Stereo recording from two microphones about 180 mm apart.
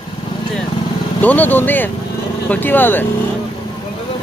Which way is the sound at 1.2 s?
10° left (ahead or behind).